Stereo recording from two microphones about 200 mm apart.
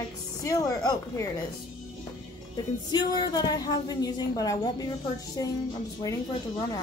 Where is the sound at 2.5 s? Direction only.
20° left (ahead or behind).